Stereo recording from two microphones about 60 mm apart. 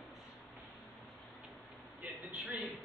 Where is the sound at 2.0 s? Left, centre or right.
Right.